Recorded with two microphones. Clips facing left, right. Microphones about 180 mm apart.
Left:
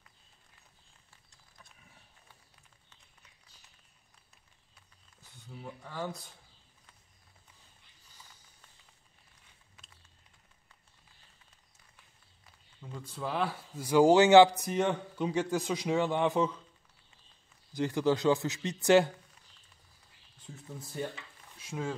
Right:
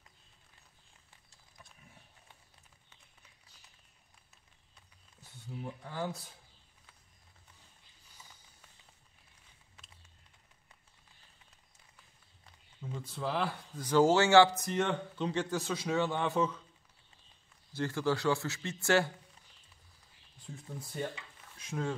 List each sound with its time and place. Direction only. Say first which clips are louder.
5.6 s speech: right 1 dB; 5° right (ahead or behind)
12.8 s speech: right 1 dB; centre (ahead or behind); by 16.5 s 15° left (ahead or behind)
17.7 s speech: left 4 dB; 15° left (ahead or behind)
20.5 s speech: left 1 dB; 5° left (ahead or behind)